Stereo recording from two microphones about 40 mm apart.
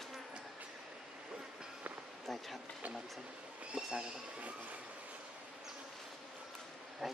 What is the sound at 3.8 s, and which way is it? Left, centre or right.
Speech, centre.